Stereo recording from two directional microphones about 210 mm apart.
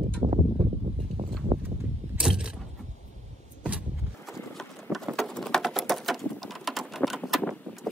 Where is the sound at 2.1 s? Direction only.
5° right (ahead or behind).